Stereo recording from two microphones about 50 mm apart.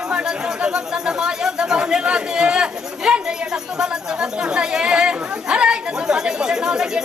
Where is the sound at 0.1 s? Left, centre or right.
Centre.